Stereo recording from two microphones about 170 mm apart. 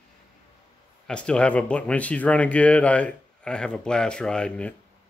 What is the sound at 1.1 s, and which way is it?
Speech, 5° left (ahead or behind).